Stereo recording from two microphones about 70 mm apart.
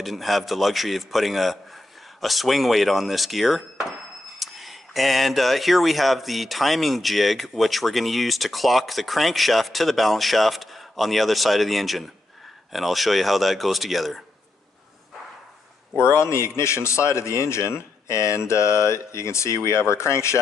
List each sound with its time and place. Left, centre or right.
0.0 s speech: centre
16.0 s a man's voice: left